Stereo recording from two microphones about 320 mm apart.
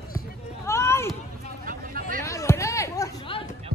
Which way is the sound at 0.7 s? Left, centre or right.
Centre.